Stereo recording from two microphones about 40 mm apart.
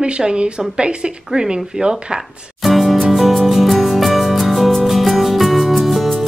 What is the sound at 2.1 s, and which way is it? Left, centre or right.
Music, centre.